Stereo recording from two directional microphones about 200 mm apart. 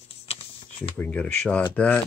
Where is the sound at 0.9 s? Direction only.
10° left (ahead or behind).